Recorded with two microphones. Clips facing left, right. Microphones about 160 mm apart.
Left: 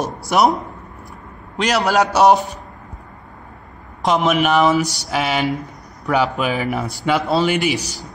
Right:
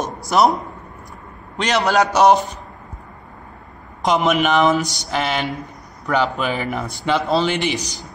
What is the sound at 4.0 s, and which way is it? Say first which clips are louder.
Speech: left 1 dB; centre (ahead or behind).